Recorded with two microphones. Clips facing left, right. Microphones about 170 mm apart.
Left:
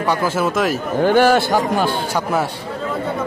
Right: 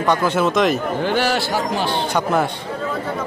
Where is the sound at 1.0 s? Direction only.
50° left (ahead or behind).